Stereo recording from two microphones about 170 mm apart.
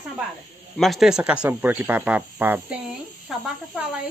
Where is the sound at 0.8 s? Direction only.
Centre (ahead or behind).